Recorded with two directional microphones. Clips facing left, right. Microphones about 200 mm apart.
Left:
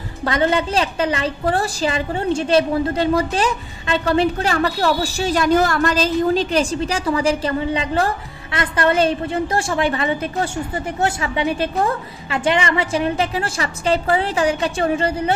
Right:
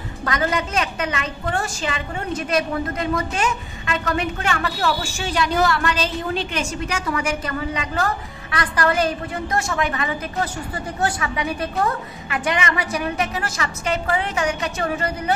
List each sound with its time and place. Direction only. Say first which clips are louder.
0.2 s a woman's voice: left 5 dB; 30° left (ahead or behind)